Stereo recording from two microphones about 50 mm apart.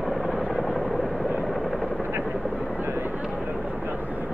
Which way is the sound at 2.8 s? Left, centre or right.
Right.